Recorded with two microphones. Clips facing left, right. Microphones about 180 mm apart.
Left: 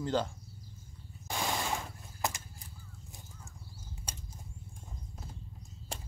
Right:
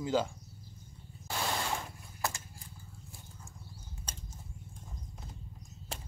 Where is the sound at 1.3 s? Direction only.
15° left (ahead or behind).